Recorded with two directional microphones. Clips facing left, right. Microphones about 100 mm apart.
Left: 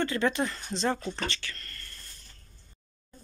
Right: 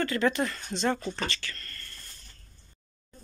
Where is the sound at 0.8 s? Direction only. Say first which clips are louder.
Right 1 dB; centre (ahead or behind).